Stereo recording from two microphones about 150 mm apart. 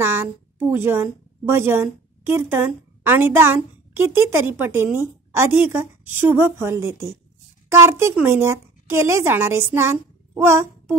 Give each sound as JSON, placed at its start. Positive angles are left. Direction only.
{"t": 0.0, "sound": "a woman's voice", "side_deg": -15}